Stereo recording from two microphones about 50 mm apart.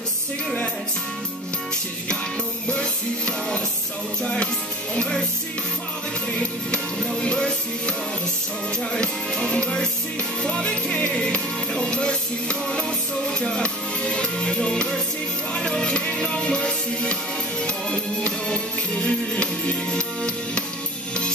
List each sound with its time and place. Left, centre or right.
2.7 s music: centre
7.2 s music: centre
8.9 s music: centre
11.0 s music: left
11.7 s music: centre
19.0 s music: left